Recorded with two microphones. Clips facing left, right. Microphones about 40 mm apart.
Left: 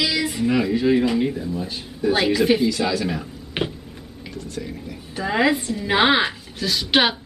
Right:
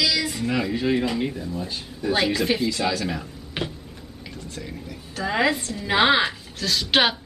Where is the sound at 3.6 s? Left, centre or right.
Left.